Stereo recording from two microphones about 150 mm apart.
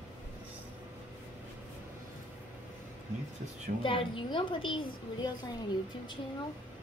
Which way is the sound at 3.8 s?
35° left (ahead or behind).